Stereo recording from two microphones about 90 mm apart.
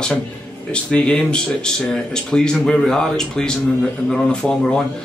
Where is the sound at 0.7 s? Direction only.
10° left (ahead or behind).